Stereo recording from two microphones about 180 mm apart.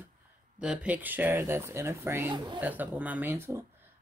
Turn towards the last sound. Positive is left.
turn(degrees=-10)  # may be behind; listen again after turning